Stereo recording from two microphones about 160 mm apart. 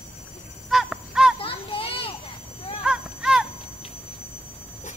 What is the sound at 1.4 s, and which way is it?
Children playing, 35° left (ahead or behind).